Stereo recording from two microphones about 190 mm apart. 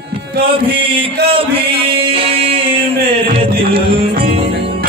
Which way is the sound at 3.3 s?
30° right (ahead or behind).